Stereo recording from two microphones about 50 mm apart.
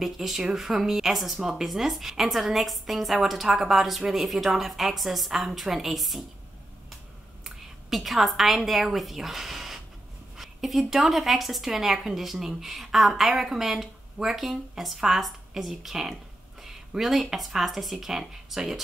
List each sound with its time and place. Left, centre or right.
0.0 s speech: centre
7.4 s a woman's voice: centre